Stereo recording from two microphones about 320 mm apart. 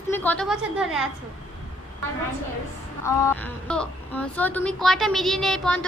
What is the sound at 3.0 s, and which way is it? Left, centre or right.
A woman's voice, centre.